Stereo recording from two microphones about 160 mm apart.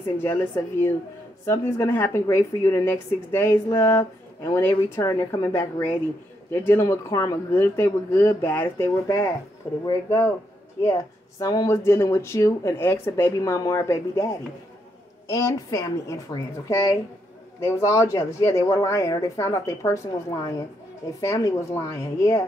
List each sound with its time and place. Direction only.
1.4 s a woman's voice: 15° left (ahead or behind)